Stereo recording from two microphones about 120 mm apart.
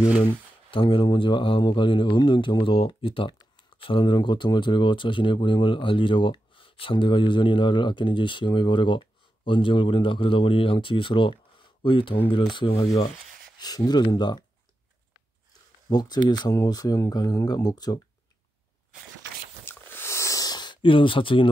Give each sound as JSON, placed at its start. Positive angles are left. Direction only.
{"t": 0.3, "sound": "speech", "side_deg": 45}
{"t": 12.7, "sound": "rub", "side_deg": 60}
{"t": 13.6, "sound": "speech", "side_deg": 35}
{"t": 15.9, "sound": "speech", "side_deg": 35}
{"t": 19.6, "sound": "a sound", "side_deg": 20}